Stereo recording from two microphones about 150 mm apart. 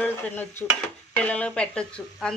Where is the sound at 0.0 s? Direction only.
10° left (ahead or behind).